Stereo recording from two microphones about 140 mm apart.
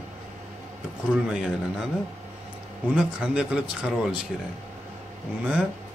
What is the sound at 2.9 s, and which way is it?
Speech, 5° right (ahead or behind).